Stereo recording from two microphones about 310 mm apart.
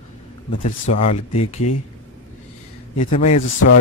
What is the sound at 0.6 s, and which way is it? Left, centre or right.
Speech, left.